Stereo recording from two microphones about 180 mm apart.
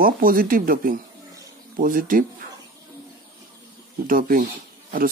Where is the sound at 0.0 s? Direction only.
55° right (ahead or behind).